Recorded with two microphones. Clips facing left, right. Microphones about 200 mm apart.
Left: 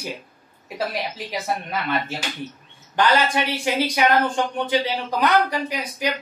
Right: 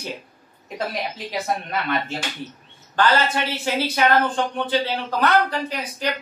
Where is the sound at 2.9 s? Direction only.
15° left (ahead or behind).